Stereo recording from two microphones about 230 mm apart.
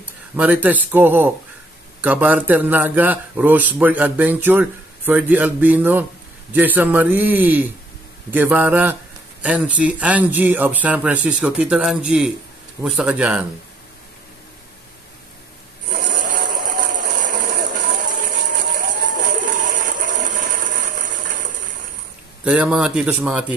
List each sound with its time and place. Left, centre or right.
0.0 s speech: centre
15.9 s a sound: right
22.4 s speech: centre